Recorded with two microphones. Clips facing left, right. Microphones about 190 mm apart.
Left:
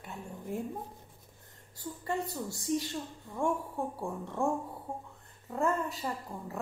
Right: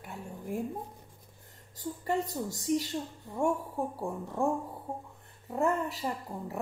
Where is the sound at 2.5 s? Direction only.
15° right (ahead or behind).